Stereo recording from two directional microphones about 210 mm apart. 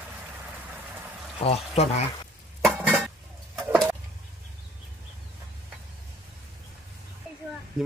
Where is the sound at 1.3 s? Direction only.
30° left (ahead or behind).